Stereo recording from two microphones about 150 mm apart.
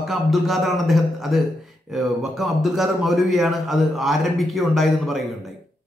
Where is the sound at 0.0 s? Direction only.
Centre (ahead or behind).